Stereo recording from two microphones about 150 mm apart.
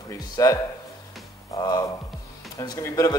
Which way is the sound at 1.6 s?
25° left (ahead or behind).